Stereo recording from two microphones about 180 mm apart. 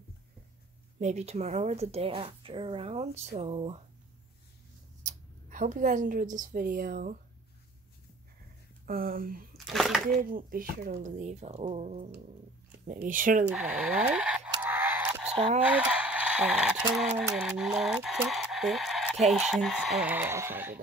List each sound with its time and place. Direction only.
0.9 s a woman's voice: 40° right (ahead or behind)
5.0 s speech: 45° right (ahead or behind)
8.8 s speech: 55° right (ahead or behind)
9.7 s speech: centre (ahead or behind)
10.0 s a woman's voice: 50° right (ahead or behind)
13.5 s speech: 5° right (ahead or behind)
14.6 s a sound: 10° right (ahead or behind)
15.6 s speech: 5° right (ahead or behind)